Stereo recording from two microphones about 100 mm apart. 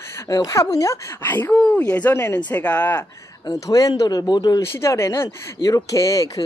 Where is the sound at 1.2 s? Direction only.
20° left (ahead or behind).